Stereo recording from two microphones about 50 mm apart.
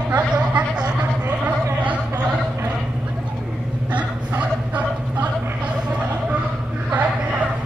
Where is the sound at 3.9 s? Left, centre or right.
Right.